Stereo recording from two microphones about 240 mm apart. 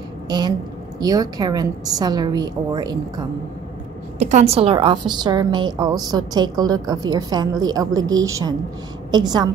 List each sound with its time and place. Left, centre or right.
0.3 s a woman's voice: centre
4.2 s a woman's voice: right